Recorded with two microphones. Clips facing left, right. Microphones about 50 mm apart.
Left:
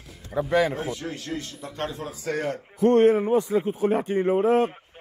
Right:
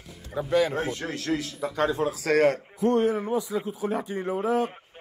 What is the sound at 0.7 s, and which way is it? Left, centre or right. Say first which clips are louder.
A man's voice: right 1 dB; right.